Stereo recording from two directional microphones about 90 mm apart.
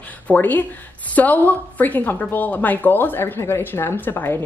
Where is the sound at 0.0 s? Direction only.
20° left (ahead or behind).